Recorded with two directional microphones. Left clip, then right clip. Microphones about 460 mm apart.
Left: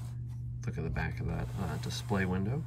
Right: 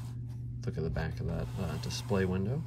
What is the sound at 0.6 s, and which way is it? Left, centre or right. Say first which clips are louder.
Speech: right 1 dB; centre.